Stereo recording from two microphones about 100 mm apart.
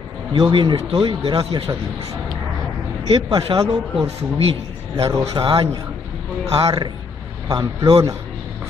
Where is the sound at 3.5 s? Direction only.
55° right (ahead or behind).